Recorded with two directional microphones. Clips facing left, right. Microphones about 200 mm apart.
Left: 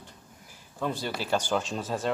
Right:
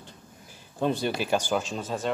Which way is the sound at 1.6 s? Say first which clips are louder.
Even; centre (ahead or behind).